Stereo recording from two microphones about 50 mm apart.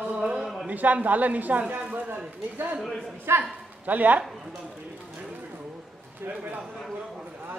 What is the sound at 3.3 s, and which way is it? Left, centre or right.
Speech, right.